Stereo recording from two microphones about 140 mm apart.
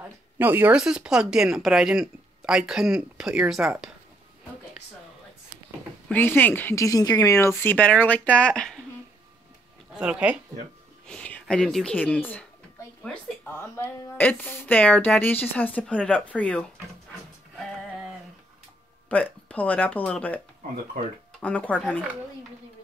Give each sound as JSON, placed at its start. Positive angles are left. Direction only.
{"t": 0.4, "sound": "speech", "side_deg": -15}
{"t": 6.0, "sound": "speech", "side_deg": 15}
{"t": 9.9, "sound": "speech", "side_deg": -5}
{"t": 11.1, "sound": "speech", "side_deg": 5}
{"t": 13.6, "sound": "speech", "side_deg": 20}
{"t": 19.0, "sound": "speech", "side_deg": 10}
{"t": 21.4, "sound": "speech", "side_deg": 10}